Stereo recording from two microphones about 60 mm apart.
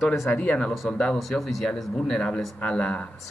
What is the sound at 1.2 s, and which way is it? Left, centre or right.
Speech, centre.